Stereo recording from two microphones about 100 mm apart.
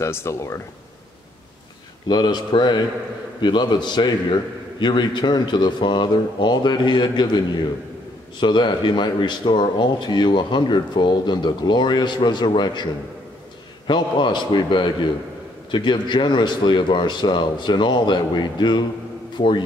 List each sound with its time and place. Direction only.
0.0 s speech: 30° left (ahead or behind)
2.0 s speech: 45° left (ahead or behind)
13.8 s a man's voice: 50° left (ahead or behind)